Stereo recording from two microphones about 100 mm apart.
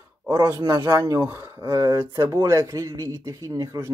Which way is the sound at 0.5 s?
30° right (ahead or behind).